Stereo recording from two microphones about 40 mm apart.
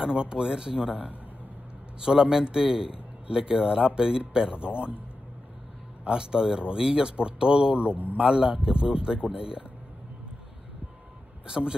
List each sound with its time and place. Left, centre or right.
0.0 s a man's voice: right
2.0 s a man's voice: centre
6.0 s a man's voice: centre
11.4 s speech: right